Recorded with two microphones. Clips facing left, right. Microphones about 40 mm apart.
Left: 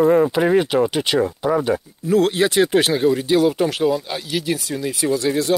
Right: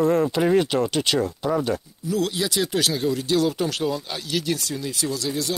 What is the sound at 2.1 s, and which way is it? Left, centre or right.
Speech, left.